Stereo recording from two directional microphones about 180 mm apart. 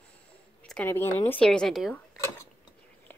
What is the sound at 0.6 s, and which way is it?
A woman's voice, 10° left (ahead or behind).